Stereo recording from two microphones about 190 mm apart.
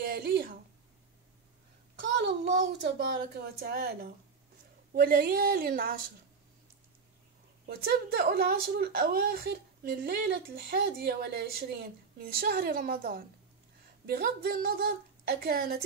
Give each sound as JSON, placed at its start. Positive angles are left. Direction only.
{"t": 0.0, "sound": "a sound", "side_deg": -55}
{"t": 2.0, "sound": "a woman's voice", "side_deg": -65}
{"t": 7.6, "sound": "a woman's voice", "side_deg": -55}